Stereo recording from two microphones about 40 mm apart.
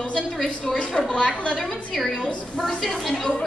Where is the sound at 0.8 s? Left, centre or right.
Left.